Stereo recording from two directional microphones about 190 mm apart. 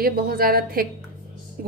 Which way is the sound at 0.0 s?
50° right (ahead or behind).